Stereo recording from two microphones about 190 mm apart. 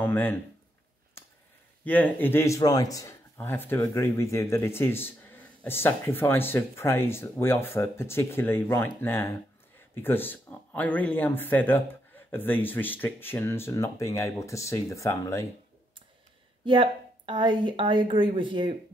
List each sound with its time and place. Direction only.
0.0 s speech: 10° left (ahead or behind)
1.9 s speech: 10° left (ahead or behind)
16.6 s speech: 25° right (ahead or behind)